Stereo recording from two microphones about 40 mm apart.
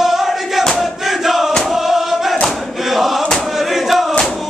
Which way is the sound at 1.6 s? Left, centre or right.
Centre.